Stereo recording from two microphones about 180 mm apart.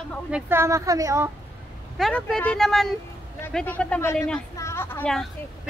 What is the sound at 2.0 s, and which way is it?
A woman's voice, centre (ahead or behind).